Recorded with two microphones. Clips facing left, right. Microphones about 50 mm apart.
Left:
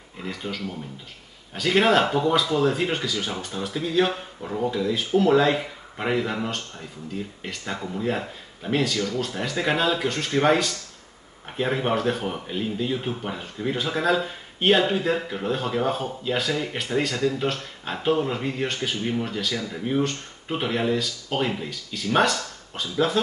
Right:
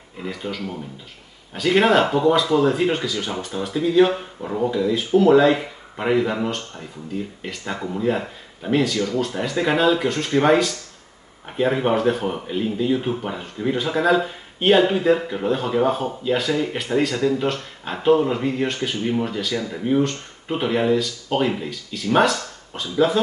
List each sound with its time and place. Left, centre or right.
0.2 s speech: centre
4.6 s speech: centre